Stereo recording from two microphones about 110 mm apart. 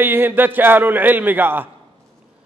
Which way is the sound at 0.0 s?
20° right (ahead or behind).